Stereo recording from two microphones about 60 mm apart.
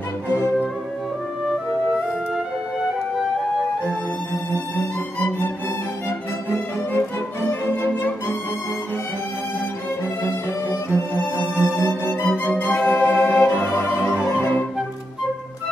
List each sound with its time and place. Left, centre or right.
6.0 s music: left
10.9 s music: right
11.7 s music: left
14.3 s flute: left